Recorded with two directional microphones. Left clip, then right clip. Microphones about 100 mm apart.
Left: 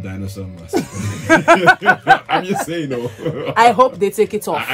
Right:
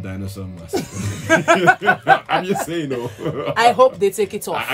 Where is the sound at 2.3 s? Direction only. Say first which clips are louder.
Left 1 dB; 20° right (ahead or behind).